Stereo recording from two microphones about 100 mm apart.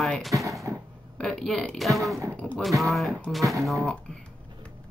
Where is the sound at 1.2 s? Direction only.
5° left (ahead or behind).